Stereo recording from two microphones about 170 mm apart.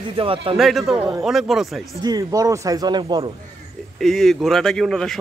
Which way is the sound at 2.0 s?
20° right (ahead or behind).